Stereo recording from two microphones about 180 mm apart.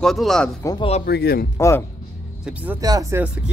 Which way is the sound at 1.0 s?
60° left (ahead or behind).